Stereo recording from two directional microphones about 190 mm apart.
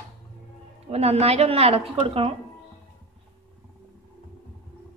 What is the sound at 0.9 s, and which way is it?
A woman's voice, 35° right (ahead or behind).